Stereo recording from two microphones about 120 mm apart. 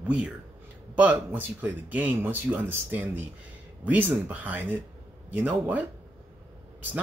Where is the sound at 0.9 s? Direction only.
15° right (ahead or behind).